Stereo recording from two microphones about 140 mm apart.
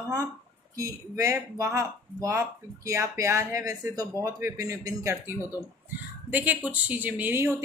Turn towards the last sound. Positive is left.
turn(degrees=-15)  # may be behind; listen again after turning